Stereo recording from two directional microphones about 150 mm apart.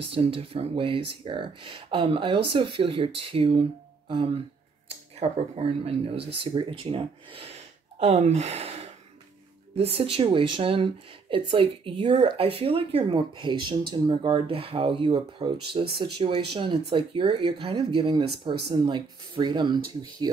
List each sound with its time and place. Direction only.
0.0 s speech: 40° right (ahead or behind)
4.8 s speech: 40° right (ahead or behind)